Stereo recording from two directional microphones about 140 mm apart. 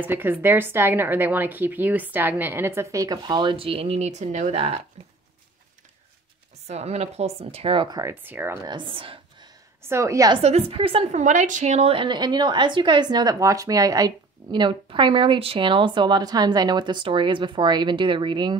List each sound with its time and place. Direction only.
0.0 s a woman's voice: 15° right (ahead or behind); by 4.7 s 50° right (ahead or behind)
5.0 s a sound: 45° right (ahead or behind)
6.7 s a woman's voice: 50° right (ahead or behind)
8.0 s a woman's voice: 15° right (ahead or behind)
8.6 s speech: 35° right (ahead or behind)
9.8 s a woman's voice: 20° right (ahead or behind)
10.4 s a woman's voice: 45° right (ahead or behind)
11.1 s a woman's voice: 60° right (ahead or behind); by 18.6 s 35° right (ahead or behind)